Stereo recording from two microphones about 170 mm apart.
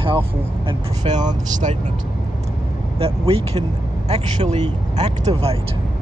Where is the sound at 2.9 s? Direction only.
35° right (ahead or behind).